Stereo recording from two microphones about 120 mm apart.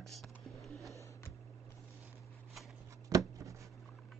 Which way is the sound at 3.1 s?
25° right (ahead or behind).